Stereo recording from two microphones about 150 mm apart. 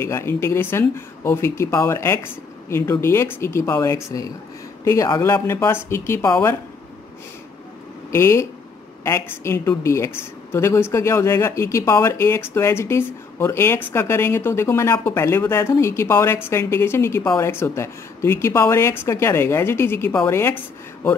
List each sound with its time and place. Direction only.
0.0 s speech: 15° left (ahead or behind)
8.1 s speech: 20° left (ahead or behind)